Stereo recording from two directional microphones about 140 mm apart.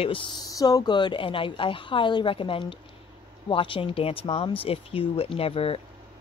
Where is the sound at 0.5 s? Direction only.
25° left (ahead or behind).